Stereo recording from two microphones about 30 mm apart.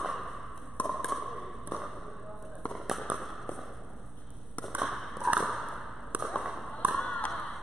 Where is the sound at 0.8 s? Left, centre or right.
Left.